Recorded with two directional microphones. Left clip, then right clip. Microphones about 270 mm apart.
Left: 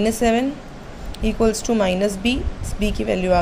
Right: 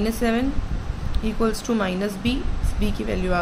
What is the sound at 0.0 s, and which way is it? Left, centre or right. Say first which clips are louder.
A woman's voice: left 5 dB; centre.